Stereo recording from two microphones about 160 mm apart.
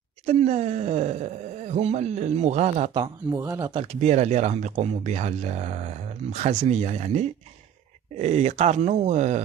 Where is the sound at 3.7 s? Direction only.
35° right (ahead or behind).